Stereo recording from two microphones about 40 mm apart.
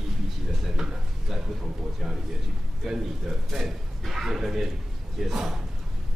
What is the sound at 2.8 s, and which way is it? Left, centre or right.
Speech, centre.